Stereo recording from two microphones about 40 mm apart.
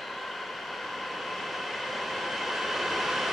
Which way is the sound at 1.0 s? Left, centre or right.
Centre.